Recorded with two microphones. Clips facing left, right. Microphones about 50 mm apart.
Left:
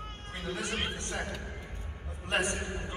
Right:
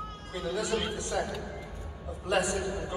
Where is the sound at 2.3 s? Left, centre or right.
Left.